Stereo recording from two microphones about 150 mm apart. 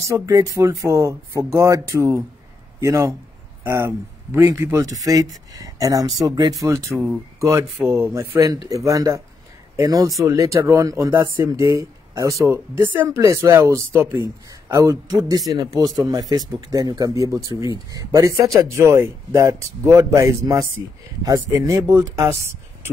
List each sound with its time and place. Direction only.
0.0 s speech: 20° right (ahead or behind)